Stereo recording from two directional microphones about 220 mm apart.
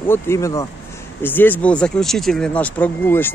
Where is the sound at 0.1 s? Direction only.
15° left (ahead or behind).